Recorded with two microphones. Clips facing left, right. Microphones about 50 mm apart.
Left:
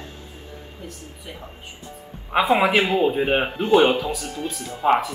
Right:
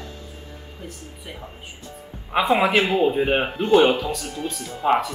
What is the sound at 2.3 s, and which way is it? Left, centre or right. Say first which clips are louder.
Speech: left 1 dB; centre.